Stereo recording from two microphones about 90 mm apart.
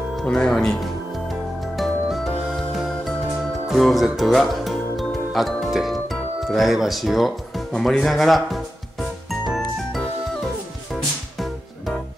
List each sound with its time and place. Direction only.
0.1 s speech: 5° left (ahead or behind)
1.8 s music: centre (ahead or behind)
3.6 s speech: centre (ahead or behind)
9.5 s music: 5° right (ahead or behind)